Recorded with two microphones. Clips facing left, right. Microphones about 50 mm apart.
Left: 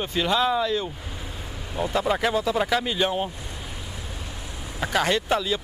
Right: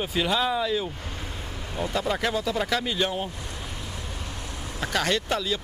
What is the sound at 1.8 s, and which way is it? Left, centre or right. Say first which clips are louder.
Speech: left 3 dB; centre.